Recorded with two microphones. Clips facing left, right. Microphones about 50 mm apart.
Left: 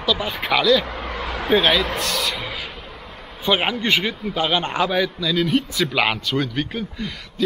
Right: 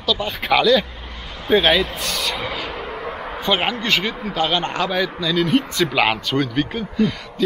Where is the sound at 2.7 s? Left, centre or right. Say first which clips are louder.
Right 9 dB; right.